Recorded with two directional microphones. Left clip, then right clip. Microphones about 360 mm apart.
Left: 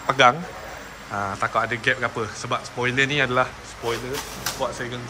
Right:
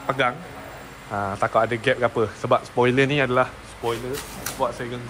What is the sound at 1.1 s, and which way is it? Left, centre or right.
A man's voice, centre.